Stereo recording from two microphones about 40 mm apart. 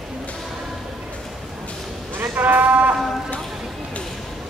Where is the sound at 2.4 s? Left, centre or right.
Right.